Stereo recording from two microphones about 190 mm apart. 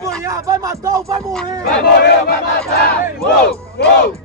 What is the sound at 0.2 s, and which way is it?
Speech, 15° right (ahead or behind).